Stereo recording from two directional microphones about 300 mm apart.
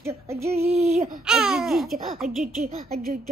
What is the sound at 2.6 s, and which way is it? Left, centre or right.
Female singing, right.